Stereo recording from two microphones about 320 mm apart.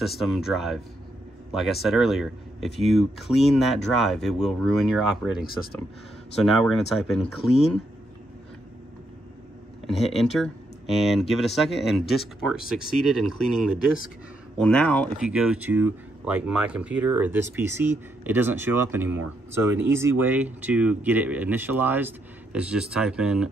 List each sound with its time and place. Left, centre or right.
0.0 s speech: centre
7.2 s speech: centre
10.0 s speech: centre
14.6 s speech: centre